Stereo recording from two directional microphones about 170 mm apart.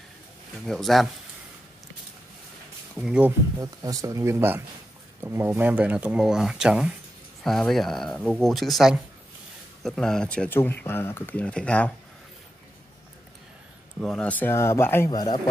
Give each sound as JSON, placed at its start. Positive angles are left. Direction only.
{"t": 0.7, "sound": "speech", "side_deg": 0}
{"t": 3.0, "sound": "speech", "side_deg": -5}
{"t": 14.0, "sound": "speech", "side_deg": 5}
{"t": 15.0, "sound": "a man's voice", "side_deg": 25}